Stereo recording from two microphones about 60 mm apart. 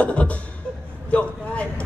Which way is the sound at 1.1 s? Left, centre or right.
Left.